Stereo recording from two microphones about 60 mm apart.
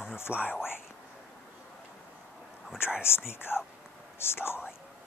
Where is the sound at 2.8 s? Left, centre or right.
Left.